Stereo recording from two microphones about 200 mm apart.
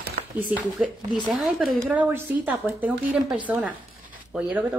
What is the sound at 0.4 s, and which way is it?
A woman's voice, 5° right (ahead or behind).